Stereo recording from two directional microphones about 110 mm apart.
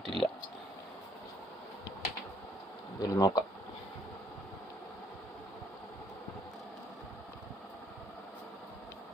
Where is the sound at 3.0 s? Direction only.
35° left (ahead or behind).